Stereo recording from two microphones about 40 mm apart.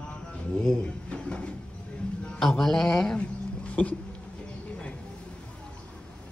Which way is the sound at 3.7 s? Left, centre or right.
Left.